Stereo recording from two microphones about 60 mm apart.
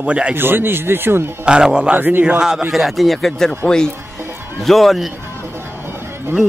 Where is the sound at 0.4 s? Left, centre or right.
Right.